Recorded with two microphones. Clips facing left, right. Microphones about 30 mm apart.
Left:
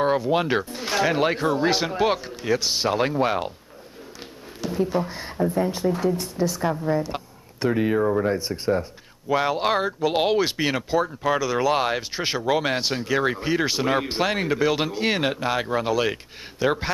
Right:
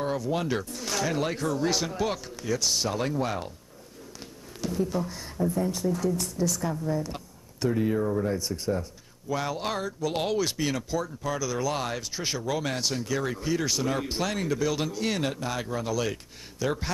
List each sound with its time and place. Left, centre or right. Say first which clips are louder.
0.0 s speech: left 7 dB; left
4.6 s speech: left 5 dB; left